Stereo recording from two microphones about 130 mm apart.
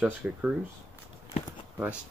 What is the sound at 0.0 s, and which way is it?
Speech, 10° right (ahead or behind).